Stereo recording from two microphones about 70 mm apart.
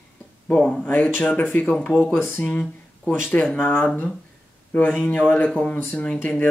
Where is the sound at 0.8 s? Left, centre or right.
Left.